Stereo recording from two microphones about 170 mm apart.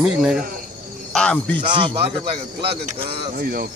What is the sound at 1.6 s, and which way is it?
Speech, 30° right (ahead or behind).